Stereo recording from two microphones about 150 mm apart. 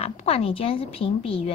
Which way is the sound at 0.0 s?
40° left (ahead or behind).